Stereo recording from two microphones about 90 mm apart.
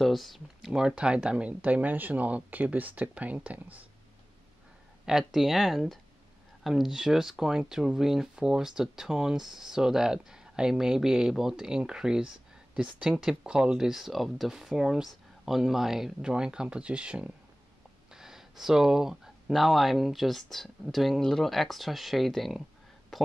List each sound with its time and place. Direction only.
0.0 s speech: centre (ahead or behind); by 3.8 s 15° right (ahead or behind)
5.0 s speech: 5° right (ahead or behind)